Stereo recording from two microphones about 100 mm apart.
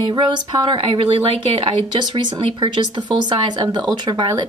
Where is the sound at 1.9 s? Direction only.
45° right (ahead or behind).